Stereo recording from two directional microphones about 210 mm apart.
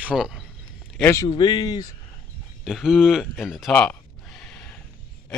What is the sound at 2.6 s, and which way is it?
Speech, centre (ahead or behind).